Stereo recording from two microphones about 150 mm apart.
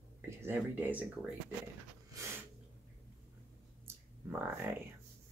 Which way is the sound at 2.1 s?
20° right (ahead or behind).